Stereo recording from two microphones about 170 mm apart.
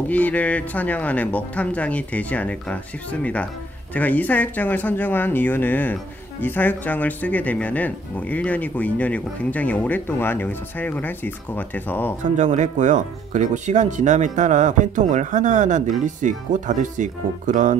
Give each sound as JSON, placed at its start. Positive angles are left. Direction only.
{"t": 0.1, "sound": "speech", "side_deg": 10}
{"t": 12.4, "sound": "speech", "side_deg": -45}